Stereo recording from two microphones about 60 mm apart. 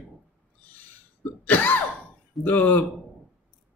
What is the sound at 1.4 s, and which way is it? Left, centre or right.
A man's voice, left.